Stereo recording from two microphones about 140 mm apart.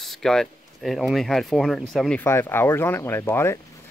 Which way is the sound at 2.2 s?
15° left (ahead or behind).